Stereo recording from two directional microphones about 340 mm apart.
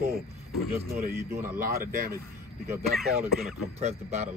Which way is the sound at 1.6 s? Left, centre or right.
Right.